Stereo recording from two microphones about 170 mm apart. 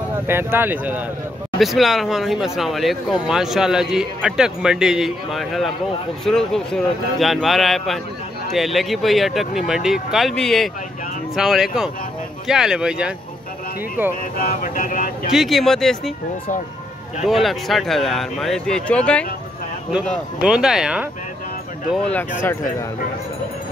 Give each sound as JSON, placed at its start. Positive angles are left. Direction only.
{"t": 0.3, "sound": "speech", "side_deg": -15}
{"t": 14.6, "sound": "speech", "side_deg": 50}
{"t": 15.3, "sound": "speech", "side_deg": 0}
{"t": 17.3, "sound": "speech", "side_deg": 0}
{"t": 20.1, "sound": "speech", "side_deg": -5}